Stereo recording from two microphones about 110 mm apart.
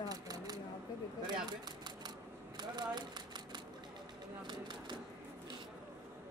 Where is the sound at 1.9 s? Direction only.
40° right (ahead or behind).